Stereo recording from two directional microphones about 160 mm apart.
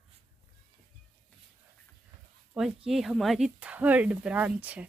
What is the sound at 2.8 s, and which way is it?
Speech, centre (ahead or behind).